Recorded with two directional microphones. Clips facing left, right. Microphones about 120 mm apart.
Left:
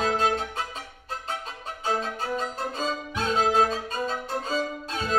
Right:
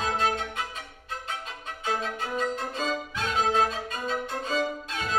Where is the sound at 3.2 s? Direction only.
35° left (ahead or behind).